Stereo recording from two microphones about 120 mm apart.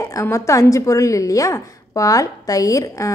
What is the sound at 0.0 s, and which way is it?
A woman's voice, 25° left (ahead or behind).